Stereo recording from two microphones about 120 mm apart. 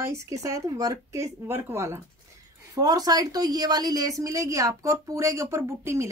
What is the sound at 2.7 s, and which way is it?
Speech, 30° right (ahead or behind).